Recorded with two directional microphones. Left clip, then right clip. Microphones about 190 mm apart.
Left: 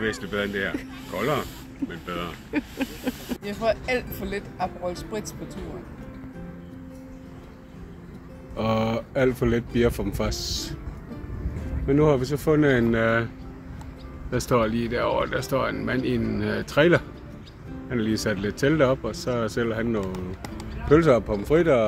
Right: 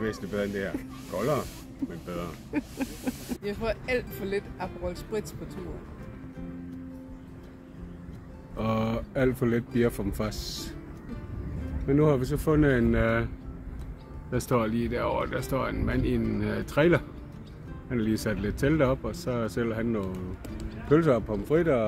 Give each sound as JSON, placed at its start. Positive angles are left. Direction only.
{"t": 0.0, "sound": "speech", "side_deg": -5}
{"t": 3.4, "sound": "speech", "side_deg": -10}
{"t": 8.5, "sound": "speech", "side_deg": 15}
{"t": 11.9, "sound": "speech", "side_deg": 5}
{"t": 14.3, "sound": "speech", "side_deg": 10}
{"t": 20.9, "sound": "a man's voice", "side_deg": 25}